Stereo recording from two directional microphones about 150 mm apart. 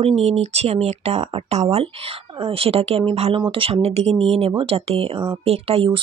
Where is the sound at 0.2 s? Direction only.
45° right (ahead or behind).